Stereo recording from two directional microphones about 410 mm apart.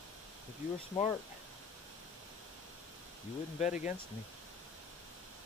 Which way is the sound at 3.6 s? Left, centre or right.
Centre.